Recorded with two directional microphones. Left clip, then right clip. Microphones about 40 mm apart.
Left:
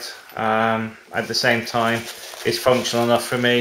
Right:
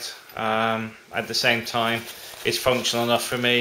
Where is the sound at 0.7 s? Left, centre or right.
Right.